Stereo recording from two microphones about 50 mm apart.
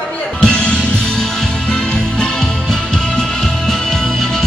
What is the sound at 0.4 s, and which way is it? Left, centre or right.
Music, centre.